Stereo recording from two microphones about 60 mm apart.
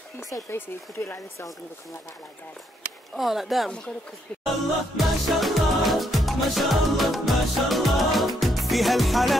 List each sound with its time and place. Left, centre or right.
0.5 s speech: left
3.2 s speech: centre
4.9 s music: centre